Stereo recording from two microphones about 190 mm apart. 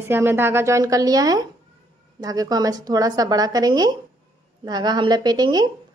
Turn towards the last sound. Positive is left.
turn(degrees=-20)  # may be behind; listen again after turning